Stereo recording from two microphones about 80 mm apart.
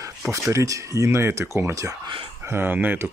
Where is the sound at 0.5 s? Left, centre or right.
Right.